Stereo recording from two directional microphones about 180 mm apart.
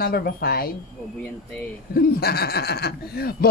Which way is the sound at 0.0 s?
60° left (ahead or behind).